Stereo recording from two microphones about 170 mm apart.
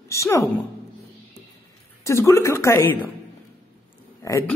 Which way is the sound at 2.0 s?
15° left (ahead or behind).